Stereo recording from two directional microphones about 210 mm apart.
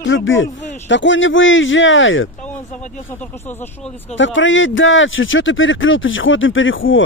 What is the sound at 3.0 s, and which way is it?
Speech, 10° left (ahead or behind).